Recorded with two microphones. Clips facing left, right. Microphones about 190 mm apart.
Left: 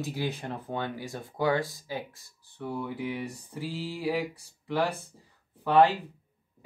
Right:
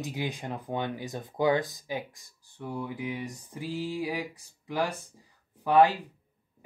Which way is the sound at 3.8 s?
15° right (ahead or behind).